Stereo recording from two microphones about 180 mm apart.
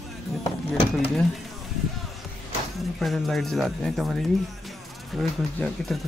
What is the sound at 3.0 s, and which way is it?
Speech, centre (ahead or behind).